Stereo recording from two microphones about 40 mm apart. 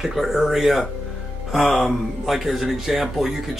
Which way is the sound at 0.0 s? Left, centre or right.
Centre.